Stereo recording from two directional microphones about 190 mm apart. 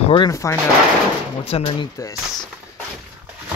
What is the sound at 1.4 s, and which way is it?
Speech, 30° left (ahead or behind).